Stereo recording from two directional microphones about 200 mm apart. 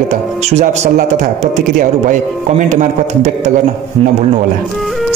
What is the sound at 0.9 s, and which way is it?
Speech, 40° right (ahead or behind).